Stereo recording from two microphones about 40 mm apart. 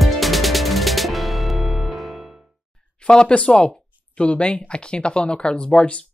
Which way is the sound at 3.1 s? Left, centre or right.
Left.